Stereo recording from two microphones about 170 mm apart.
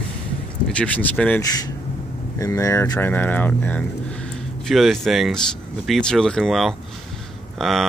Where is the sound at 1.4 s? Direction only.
20° left (ahead or behind).